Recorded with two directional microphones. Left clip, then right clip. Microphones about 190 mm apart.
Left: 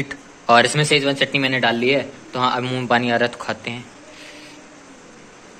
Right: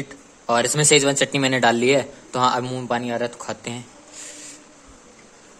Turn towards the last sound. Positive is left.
turn(degrees=-40)  # may be behind; listen again after turning